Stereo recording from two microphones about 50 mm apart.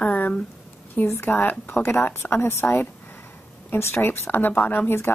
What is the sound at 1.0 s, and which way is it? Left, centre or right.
A woman's voice, left.